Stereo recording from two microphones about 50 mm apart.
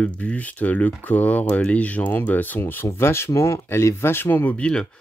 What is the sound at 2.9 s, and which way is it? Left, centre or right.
Speech, left.